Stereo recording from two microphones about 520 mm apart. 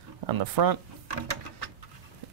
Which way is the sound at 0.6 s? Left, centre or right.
Right.